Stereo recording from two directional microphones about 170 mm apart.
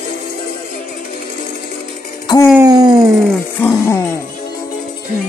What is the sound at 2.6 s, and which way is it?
Wail, 20° right (ahead or behind).